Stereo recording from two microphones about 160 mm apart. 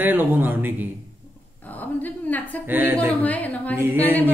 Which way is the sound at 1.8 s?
10° left (ahead or behind).